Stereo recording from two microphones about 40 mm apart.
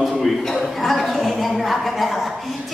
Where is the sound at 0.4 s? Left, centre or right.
Centre.